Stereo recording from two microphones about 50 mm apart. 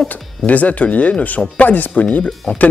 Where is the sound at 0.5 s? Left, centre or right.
Left.